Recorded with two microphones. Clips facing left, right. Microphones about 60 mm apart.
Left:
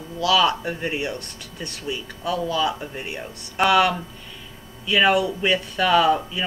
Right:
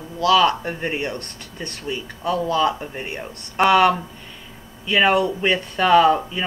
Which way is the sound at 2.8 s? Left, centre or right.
Centre.